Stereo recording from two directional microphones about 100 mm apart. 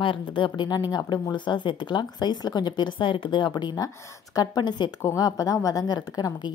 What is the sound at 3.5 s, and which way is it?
Speech, 45° left (ahead or behind).